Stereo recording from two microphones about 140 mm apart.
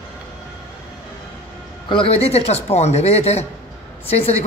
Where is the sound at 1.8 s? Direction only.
40° left (ahead or behind).